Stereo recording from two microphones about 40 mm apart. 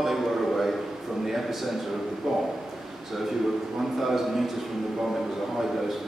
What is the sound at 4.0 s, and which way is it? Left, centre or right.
Speech, centre.